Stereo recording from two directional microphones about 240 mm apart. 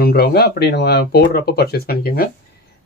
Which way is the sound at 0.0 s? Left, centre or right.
Left.